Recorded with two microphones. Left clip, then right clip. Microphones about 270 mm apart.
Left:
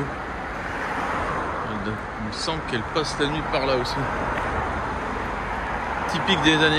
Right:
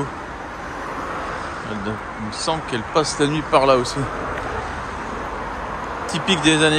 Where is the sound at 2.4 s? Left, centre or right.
Centre.